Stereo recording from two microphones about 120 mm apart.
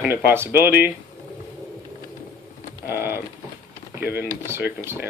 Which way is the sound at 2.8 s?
20° right (ahead or behind).